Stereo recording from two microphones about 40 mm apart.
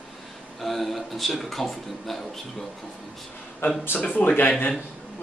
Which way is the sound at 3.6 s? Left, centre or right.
Left.